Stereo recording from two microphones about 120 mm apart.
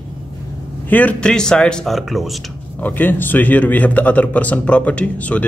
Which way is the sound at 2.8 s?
15° left (ahead or behind).